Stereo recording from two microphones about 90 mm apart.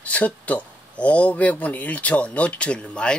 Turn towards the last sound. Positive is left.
turn(degrees=10)  # may be behind; listen again after turning